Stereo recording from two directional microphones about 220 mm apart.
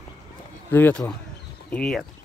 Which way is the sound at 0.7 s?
10° left (ahead or behind).